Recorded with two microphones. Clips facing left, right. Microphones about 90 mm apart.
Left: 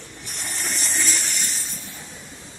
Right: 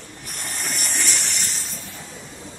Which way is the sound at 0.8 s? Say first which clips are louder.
Left 1 dB; 20° right (ahead or behind).